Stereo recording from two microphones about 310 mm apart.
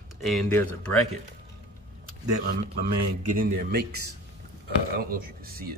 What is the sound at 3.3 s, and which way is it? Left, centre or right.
Speech, right.